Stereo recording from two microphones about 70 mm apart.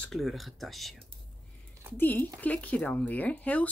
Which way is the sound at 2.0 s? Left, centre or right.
Left.